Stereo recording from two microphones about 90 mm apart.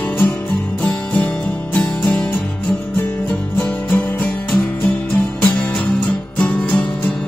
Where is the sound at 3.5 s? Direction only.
20° left (ahead or behind).